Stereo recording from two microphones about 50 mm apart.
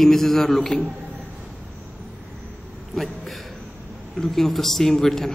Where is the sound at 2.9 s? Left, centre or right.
Centre.